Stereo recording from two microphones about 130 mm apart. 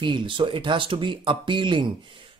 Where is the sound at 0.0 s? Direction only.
40° right (ahead or behind).